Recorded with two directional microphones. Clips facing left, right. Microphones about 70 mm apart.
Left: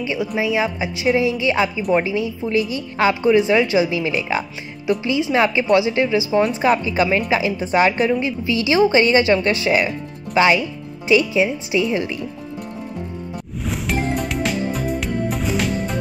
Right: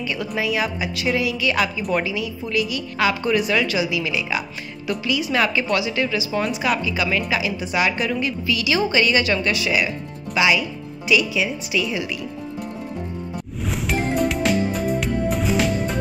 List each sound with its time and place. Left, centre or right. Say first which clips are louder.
0.0 s a woman's voice: left 3 dB; left
6.5 s a woman's voice: left 5 dB; left
13.6 s music: left 1 dB; centre